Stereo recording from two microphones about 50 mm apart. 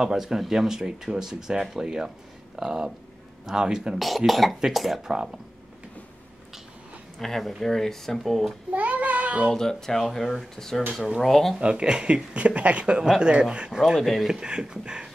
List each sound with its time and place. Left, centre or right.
0.0 s speech: centre
4.3 s speech: centre
7.2 s speech: centre
8.7 s child singing: right
9.5 s speech: centre
11.6 s speech: centre
13.7 s speech: centre
13.9 s speech: centre
14.2 s speech: centre